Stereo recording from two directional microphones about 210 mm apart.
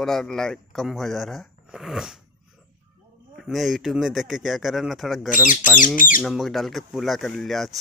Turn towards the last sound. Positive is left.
turn(degrees=0)  # may be behind; listen again after turning